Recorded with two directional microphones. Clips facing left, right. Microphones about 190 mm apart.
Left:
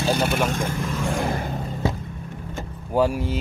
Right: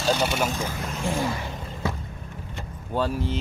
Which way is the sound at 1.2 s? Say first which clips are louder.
Left 2 dB; 50° left (ahead or behind).